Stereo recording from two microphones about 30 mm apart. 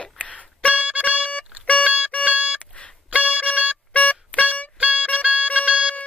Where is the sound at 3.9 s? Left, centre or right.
Left.